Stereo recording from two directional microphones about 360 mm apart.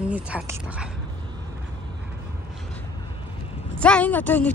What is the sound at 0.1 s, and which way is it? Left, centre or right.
Speech, centre.